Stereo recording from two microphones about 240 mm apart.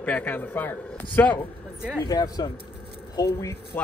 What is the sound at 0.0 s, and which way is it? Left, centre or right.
Speech, centre.